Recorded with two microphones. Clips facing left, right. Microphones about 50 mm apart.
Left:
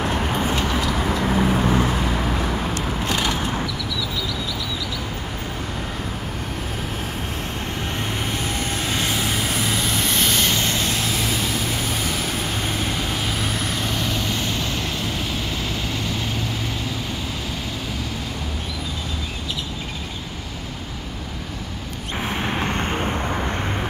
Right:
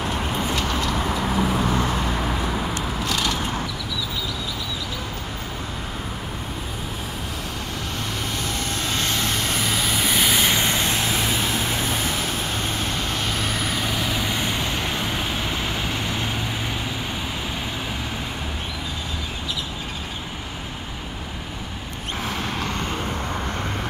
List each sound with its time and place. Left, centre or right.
0.0 s a sound: left
0.7 s vehicle: centre
3.0 s a sound: left
8.3 s vehicle: left; by 12.2 s right
12.6 s vehicle: centre; by 16.3 s right
22.1 s vehicle: left
23.1 s vehicle: left